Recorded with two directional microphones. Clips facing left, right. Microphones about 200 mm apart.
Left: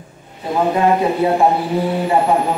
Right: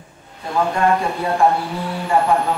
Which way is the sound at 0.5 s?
20° left (ahead or behind).